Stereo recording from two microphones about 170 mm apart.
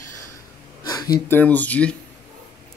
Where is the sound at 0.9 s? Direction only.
20° left (ahead or behind).